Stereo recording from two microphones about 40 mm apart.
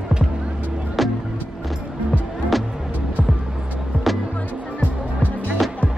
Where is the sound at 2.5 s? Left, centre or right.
Centre.